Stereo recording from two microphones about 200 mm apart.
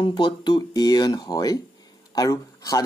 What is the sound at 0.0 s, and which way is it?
Speech, 20° left (ahead or behind).